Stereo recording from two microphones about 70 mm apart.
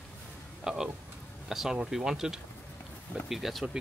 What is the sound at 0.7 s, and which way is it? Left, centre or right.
Speech, centre.